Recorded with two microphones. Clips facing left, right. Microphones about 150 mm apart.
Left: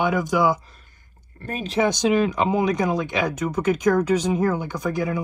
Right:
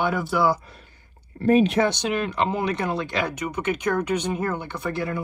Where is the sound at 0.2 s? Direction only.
15° left (ahead or behind).